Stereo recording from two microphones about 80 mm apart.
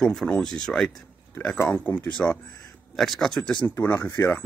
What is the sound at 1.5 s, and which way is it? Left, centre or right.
Speech, left.